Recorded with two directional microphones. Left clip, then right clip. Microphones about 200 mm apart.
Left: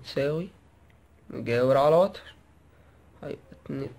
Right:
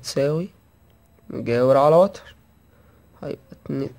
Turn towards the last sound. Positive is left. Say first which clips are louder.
# right 7 dB
turn(degrees=-35)  # may be behind; listen again after turning